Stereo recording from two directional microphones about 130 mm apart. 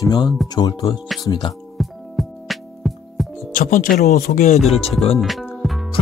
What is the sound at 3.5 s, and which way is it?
Speech, 90° left.